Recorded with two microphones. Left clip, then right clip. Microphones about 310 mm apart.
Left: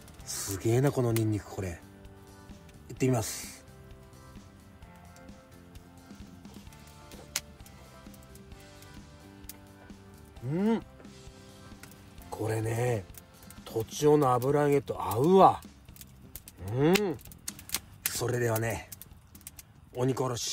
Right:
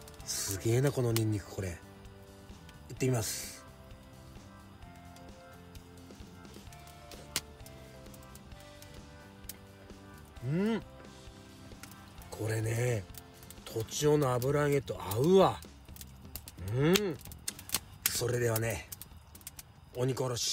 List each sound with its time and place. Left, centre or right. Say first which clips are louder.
0.2 s speech: left 2 dB; left
2.9 s speech: left 4 dB; left
10.5 s speech: left 4 dB; centre
12.3 s speech: left 4 dB; centre
16.7 s speech: left 3 dB; centre
20.0 s speech: left 3 dB; left